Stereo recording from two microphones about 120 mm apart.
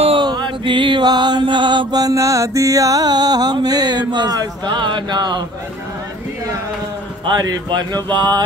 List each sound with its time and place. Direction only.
0.2 s mantra: 40° right (ahead or behind)
7.2 s mantra: 35° right (ahead or behind)